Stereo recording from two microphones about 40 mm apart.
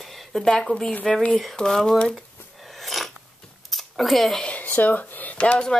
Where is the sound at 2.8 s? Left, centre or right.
Centre.